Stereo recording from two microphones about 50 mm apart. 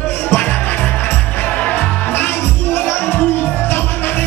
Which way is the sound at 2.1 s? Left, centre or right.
Left.